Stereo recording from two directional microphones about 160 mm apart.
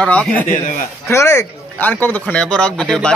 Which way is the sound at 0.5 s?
55° left (ahead or behind).